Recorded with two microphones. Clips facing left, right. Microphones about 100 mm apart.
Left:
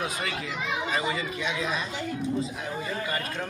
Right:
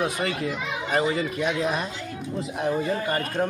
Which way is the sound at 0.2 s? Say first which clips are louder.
Right 5 dB; 40° right (ahead or behind).